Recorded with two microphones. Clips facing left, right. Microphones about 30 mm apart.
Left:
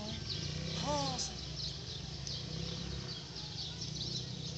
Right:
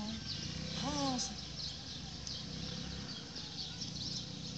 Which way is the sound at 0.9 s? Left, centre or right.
Left.